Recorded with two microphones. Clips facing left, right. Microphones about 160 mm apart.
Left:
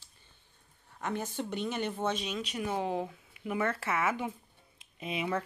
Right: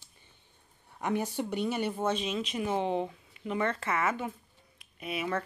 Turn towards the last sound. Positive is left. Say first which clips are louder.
# even
turn(degrees=25)  # may be behind; listen again after turning